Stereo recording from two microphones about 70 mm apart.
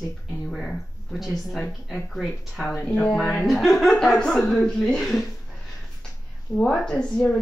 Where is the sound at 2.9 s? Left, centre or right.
Centre.